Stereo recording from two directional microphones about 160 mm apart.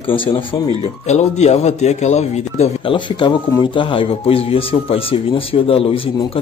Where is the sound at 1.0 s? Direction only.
45° left (ahead or behind).